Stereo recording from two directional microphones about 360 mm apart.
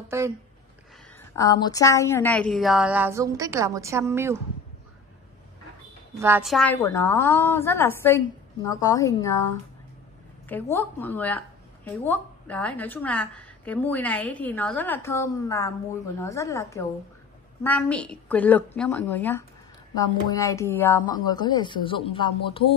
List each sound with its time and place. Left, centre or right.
0.1 s speech: centre
1.1 s speech: centre
6.1 s speech: centre
10.5 s speech: centre